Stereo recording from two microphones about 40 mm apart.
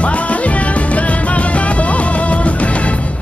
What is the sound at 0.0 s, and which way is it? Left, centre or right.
Music, left.